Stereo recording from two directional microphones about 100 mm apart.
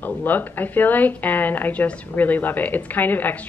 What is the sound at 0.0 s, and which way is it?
Speech, 20° left (ahead or behind).